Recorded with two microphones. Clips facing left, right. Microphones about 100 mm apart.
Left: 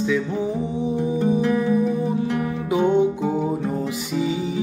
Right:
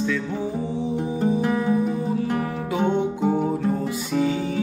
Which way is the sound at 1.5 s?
25° right (ahead or behind).